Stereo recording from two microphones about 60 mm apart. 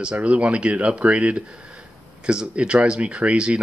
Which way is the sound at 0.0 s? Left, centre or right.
Centre.